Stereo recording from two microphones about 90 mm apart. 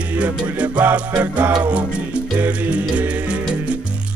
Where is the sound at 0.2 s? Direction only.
15° right (ahead or behind).